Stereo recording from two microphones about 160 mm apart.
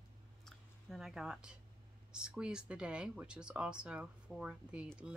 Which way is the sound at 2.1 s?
5° right (ahead or behind).